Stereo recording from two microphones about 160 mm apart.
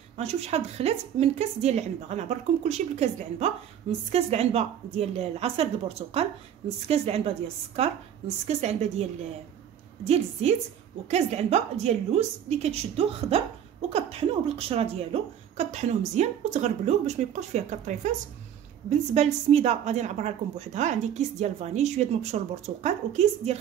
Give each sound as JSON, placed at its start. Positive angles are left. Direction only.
{"t": 0.2, "sound": "a woman's voice", "side_deg": -40}
{"t": 10.0, "sound": "a woman's voice", "side_deg": -40}